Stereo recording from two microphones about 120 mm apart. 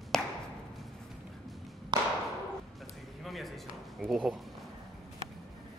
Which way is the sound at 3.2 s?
Centre (ahead or behind).